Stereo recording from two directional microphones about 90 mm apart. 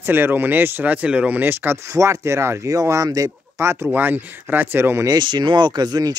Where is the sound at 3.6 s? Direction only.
25° right (ahead or behind).